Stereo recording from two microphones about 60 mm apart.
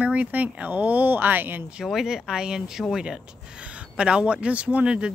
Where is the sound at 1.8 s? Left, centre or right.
Centre.